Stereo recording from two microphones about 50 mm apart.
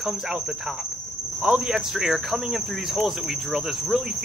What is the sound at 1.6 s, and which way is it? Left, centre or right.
Speech, centre.